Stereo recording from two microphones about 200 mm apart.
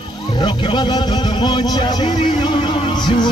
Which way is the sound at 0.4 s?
25° left (ahead or behind).